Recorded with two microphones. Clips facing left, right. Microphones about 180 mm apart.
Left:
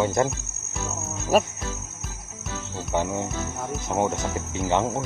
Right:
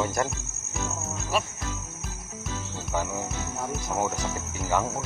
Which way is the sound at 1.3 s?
45° left (ahead or behind).